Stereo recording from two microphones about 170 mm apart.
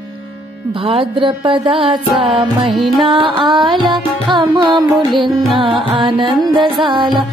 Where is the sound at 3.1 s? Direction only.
30° right (ahead or behind).